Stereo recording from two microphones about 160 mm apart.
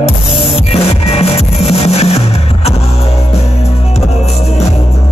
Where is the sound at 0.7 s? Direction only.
35° left (ahead or behind).